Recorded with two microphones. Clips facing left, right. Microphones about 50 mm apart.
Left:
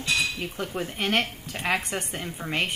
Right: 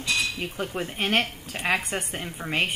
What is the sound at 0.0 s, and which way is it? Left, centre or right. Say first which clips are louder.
Cutlery: left 1 dB; left.